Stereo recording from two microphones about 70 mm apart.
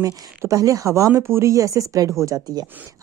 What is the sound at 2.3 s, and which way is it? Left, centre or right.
Speech, right.